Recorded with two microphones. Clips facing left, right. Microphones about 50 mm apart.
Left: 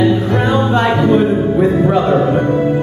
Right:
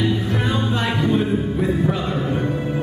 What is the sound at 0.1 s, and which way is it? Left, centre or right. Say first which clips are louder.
Music: left 8 dB; left.